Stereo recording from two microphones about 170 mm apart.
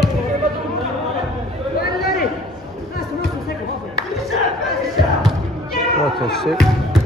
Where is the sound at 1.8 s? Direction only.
65° left (ahead or behind).